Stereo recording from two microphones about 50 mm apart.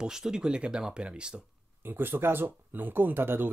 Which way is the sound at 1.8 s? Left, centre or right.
Right.